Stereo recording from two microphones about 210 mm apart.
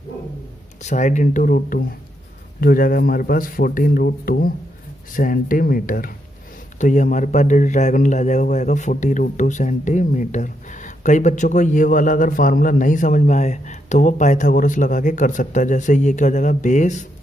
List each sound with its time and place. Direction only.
0.8 s a man's voice: 35° left (ahead or behind)